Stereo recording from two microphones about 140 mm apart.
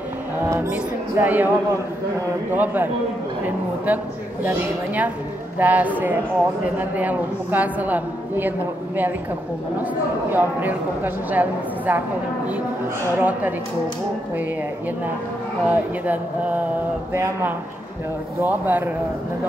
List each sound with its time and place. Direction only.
0.5 s speech: 15° right (ahead or behind)
2.5 s speech: 10° right (ahead or behind)
10.3 s speech: 15° right (ahead or behind)
13.2 s speech: 10° right (ahead or behind)
15.6 s speech: 10° right (ahead or behind)